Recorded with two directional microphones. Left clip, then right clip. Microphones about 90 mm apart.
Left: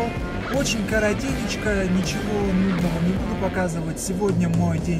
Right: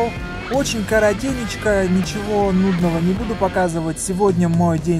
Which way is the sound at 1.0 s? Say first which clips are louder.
Right 5 dB; 35° left (ahead or behind).